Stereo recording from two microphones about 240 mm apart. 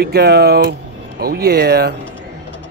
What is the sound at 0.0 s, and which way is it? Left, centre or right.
Speech, right.